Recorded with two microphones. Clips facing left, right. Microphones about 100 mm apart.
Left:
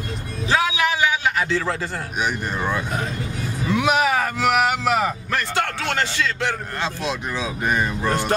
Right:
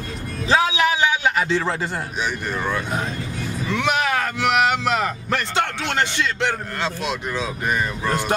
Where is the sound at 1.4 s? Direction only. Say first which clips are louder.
Right 1 dB; 20° right (ahead or behind).